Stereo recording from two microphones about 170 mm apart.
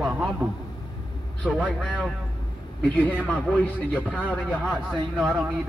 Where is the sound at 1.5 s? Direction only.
5° left (ahead or behind).